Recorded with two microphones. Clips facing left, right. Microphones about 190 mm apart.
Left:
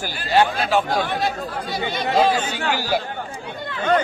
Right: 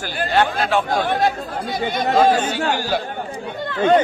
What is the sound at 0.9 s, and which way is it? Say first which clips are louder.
A man's voice: right 3 dB; 50° right (ahead or behind).